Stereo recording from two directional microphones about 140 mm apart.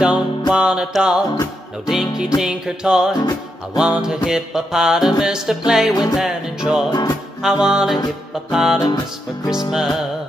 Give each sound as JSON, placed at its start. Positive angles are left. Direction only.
{"t": 0.0, "sound": "music", "side_deg": -5}
{"t": 6.9, "sound": "music", "side_deg": 25}
{"t": 7.6, "sound": "music", "side_deg": -5}